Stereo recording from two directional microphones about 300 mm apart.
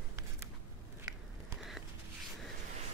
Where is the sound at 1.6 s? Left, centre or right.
Centre.